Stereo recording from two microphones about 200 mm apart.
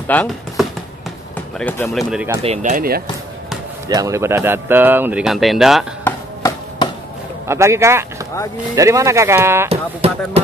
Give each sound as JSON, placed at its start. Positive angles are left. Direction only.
{"t": 0.0, "sound": "a sound", "side_deg": 5}
{"t": 1.6, "sound": "speech", "side_deg": 5}
{"t": 2.0, "sound": "speech", "side_deg": -10}
{"t": 2.6, "sound": "speech", "side_deg": -45}
{"t": 3.9, "sound": "speech", "side_deg": -15}
{"t": 6.0, "sound": "chop", "side_deg": 15}
{"t": 7.4, "sound": "speech", "side_deg": -15}
{"t": 9.7, "sound": "speech", "side_deg": -30}